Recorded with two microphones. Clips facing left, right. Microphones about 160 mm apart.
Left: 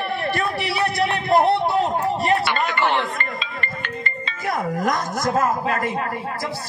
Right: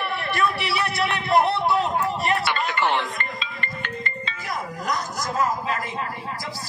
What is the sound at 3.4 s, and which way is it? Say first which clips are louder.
Music: left 3 dB; 55° left (ahead or behind).